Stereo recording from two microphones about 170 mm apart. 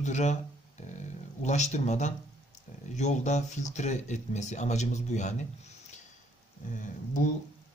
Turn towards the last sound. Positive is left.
turn(degrees=50)  # may be behind; listen again after turning